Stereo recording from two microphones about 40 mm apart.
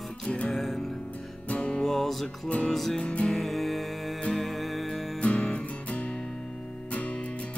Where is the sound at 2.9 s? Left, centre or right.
Left.